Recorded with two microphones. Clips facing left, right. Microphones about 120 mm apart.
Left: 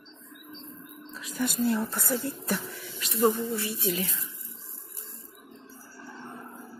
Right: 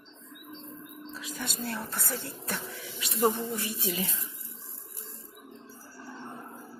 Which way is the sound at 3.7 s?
20° right (ahead or behind).